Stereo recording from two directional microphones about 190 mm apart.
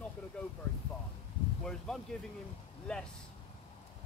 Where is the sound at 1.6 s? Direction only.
5° left (ahead or behind).